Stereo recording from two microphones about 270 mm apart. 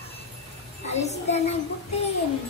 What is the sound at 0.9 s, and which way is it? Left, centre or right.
Speech, left.